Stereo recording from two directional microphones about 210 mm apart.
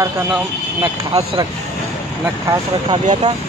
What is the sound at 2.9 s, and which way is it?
Speech, 25° right (ahead or behind).